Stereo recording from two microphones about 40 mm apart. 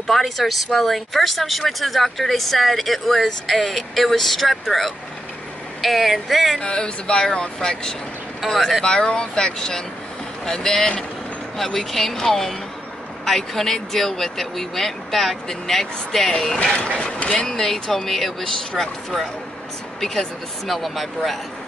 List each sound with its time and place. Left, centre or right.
0.0 s speech: centre
6.6 s speech: left; by 8.7 s centre
8.8 s speech: left
16.6 s speech: left; by 18.9 s centre
20.0 s speech: centre